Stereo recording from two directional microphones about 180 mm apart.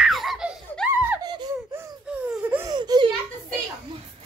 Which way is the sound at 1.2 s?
20° right (ahead or behind).